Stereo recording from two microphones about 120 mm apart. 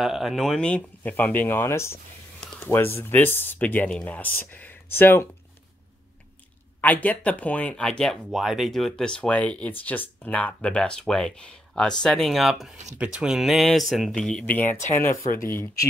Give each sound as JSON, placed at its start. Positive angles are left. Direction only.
{"t": 0.0, "sound": "speech", "side_deg": 0}
{"t": 6.8, "sound": "speech", "side_deg": 15}